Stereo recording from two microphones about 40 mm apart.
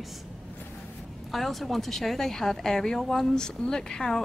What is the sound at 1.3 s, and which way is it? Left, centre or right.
A woman's voice, centre.